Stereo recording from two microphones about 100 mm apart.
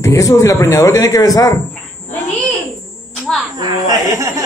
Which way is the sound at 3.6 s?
35° right (ahead or behind).